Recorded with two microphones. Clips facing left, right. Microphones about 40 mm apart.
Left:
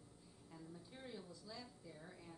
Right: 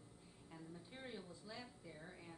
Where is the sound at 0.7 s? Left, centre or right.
Right.